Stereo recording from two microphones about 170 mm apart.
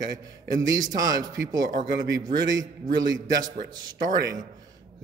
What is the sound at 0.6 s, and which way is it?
Speech, 20° right (ahead or behind).